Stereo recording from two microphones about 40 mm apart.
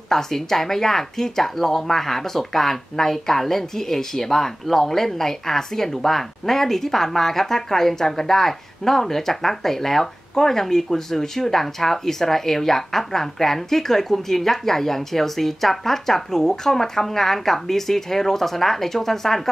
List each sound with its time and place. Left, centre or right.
0.1 s speech: centre